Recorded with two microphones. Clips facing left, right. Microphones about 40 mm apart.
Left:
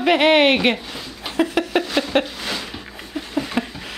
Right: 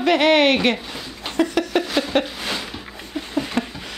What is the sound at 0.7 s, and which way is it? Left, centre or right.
Speech, centre.